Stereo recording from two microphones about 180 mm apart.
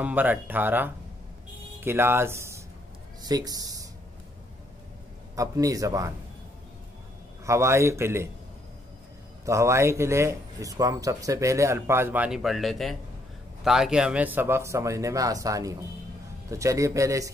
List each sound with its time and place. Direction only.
0.0 s a man's voice: 10° right (ahead or behind)
5.3 s a man's voice: 20° right (ahead or behind)
7.4 s a man's voice: 15° right (ahead or behind)
9.4 s a man's voice: 15° right (ahead or behind)